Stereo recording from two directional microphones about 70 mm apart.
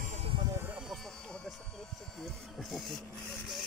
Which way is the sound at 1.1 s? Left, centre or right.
Centre.